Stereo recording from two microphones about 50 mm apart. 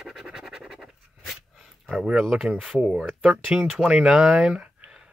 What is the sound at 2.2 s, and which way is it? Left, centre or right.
Speech, centre.